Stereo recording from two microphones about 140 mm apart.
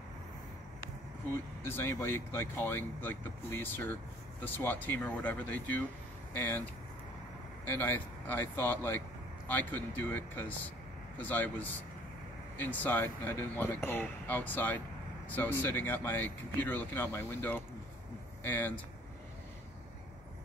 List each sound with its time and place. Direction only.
1.6 s speech: 20° left (ahead or behind)
7.6 s speech: 15° left (ahead or behind)